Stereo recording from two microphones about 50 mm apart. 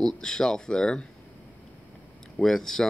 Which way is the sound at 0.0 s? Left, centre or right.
Centre.